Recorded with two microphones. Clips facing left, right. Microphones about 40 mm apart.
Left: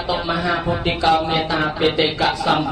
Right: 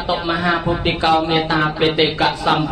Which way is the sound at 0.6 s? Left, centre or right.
Centre.